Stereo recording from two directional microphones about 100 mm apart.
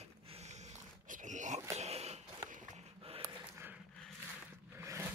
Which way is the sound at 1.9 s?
90° right.